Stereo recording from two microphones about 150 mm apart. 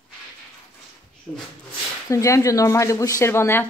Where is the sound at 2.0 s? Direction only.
20° left (ahead or behind).